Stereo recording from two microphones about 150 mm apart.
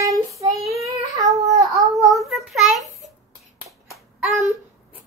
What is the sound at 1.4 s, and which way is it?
Child singing, 25° right (ahead or behind).